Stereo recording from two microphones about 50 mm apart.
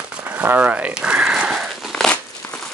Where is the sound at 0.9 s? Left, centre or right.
Centre.